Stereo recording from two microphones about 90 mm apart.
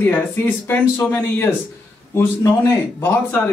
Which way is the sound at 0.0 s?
20° left (ahead or behind).